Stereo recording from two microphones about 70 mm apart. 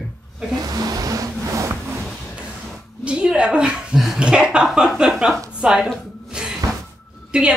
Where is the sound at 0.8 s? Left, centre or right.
Right.